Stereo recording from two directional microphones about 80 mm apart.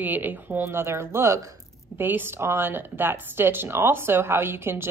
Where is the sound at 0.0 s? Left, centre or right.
Right.